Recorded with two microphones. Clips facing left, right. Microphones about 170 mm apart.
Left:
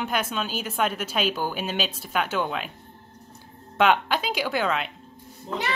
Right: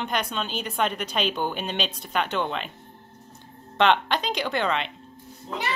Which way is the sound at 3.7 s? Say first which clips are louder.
Even; 5° left (ahead or behind).